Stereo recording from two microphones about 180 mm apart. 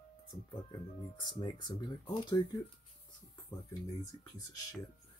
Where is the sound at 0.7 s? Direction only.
25° left (ahead or behind).